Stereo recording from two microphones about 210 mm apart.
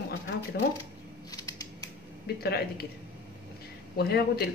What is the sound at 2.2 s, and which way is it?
Speech, 50° left (ahead or behind).